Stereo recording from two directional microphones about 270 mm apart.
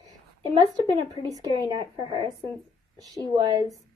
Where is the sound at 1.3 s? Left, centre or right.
Centre.